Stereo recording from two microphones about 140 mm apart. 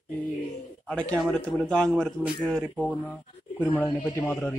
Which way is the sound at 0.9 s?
10° left (ahead or behind).